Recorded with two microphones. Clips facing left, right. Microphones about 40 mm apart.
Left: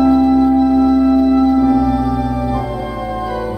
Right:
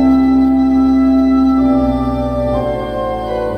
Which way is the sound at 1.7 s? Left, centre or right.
Right.